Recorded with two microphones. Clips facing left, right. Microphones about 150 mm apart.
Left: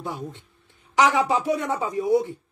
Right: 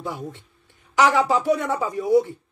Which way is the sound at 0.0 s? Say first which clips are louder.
Right 1 dB; 20° left (ahead or behind).